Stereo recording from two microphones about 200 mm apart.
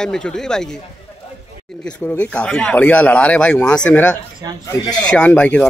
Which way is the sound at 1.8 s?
10° left (ahead or behind).